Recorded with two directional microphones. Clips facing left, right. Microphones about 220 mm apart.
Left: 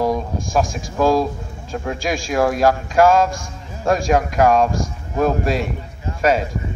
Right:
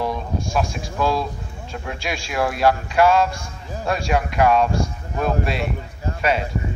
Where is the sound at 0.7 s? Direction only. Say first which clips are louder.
Left 5 dB; 40° left (ahead or behind).